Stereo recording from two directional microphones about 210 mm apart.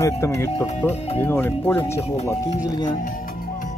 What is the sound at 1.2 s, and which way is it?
Speech, 10° left (ahead or behind).